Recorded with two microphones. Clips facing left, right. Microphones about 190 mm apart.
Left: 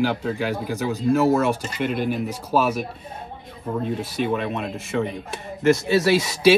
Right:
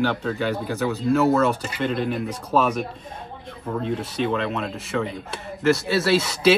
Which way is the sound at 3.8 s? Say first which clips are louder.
Right 1 dB; 10° left (ahead or behind).